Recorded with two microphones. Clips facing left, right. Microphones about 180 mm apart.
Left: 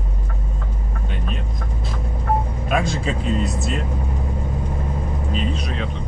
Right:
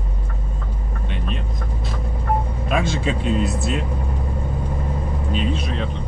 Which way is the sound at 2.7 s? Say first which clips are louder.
Even; centre (ahead or behind).